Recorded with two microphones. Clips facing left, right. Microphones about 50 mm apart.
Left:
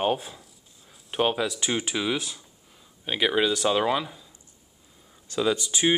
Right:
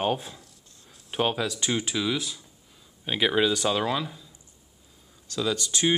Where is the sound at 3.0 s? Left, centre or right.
Centre.